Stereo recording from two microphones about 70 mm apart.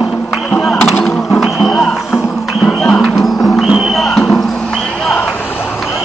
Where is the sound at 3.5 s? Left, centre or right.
Centre.